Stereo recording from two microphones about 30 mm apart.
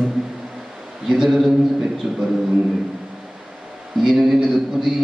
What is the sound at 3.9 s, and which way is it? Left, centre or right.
Speech, centre.